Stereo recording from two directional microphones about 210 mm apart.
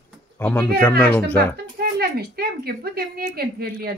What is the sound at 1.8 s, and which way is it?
A woman's voice, 50° right (ahead or behind).